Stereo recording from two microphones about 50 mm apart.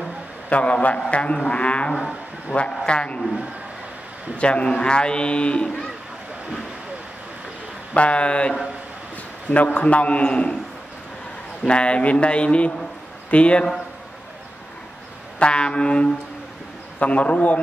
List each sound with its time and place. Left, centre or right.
0.0 s a sound: left
1.1 s a man's voice: left
2.9 s a man's voice: left
4.4 s a man's voice: left
7.9 s a man's voice: left
11.6 s a man's voice: left
15.3 s a man's voice: left